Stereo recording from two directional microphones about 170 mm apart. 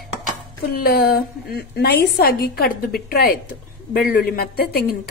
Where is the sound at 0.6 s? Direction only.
60° left (ahead or behind).